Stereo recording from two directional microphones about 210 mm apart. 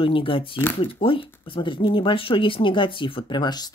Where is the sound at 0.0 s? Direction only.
25° left (ahead or behind).